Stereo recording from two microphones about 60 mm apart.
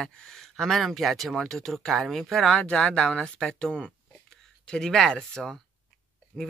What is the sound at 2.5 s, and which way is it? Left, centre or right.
Speech, left.